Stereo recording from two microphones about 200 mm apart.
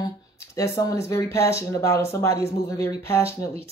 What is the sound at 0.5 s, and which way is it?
Speech, 15° left (ahead or behind).